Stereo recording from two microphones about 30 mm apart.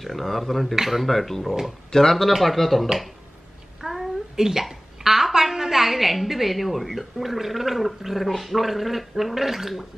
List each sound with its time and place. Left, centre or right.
0.0 s a woman's voice: centre
1.9 s speech: centre
2.2 s a woman's voice: centre
3.8 s a sound: centre
4.5 s a woman's voice: centre